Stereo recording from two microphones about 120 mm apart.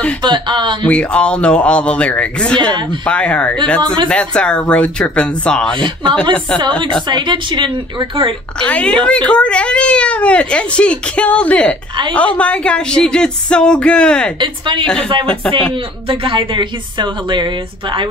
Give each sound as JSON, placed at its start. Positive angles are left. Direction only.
{"t": 0.2, "sound": "a woman's voice", "side_deg": -40}
{"t": 0.8, "sound": "a child's voice", "side_deg": 10}
{"t": 6.8, "sound": "a woman's voice", "side_deg": -40}
{"t": 8.5, "sound": "a child's voice", "side_deg": 10}
{"t": 14.4, "sound": "a woman's voice", "side_deg": -45}
{"t": 16.1, "sound": "a woman's voice", "side_deg": -45}